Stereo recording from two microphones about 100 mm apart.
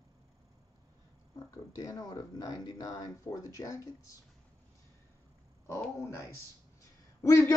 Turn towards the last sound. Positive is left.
turn(degrees=30)  # may be behind; listen again after turning